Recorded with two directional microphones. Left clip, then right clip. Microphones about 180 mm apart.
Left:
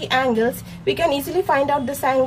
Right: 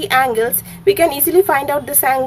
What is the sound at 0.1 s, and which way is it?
A woman's voice, 30° right (ahead or behind).